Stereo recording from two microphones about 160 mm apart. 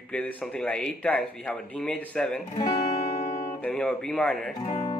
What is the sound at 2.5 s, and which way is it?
Music, 25° left (ahead or behind).